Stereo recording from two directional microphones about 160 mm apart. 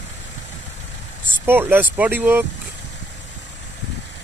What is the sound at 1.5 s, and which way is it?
Speech, 15° right (ahead or behind).